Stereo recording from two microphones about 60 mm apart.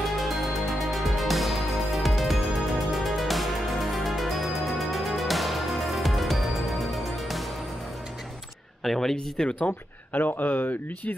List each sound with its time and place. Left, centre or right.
0.0 s music: centre
8.8 s speech: centre
9.1 s speech: centre